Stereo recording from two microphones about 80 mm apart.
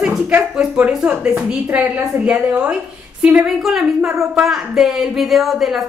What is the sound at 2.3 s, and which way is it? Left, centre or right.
A woman's voice, centre.